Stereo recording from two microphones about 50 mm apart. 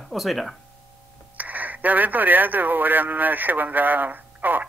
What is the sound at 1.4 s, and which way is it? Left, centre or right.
Speech, right.